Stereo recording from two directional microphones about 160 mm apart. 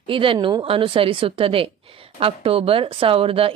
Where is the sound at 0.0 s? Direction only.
35° right (ahead or behind).